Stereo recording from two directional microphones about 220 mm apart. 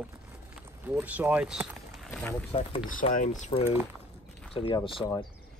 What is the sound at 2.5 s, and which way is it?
Speech, 25° left (ahead or behind).